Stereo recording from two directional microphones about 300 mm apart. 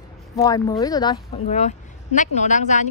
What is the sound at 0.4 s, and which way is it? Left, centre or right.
A woman's voice, centre.